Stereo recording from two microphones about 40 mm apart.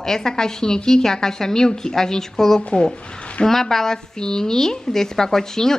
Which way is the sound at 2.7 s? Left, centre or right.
Left.